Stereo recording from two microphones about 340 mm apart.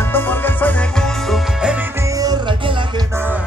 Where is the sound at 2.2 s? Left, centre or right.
Centre.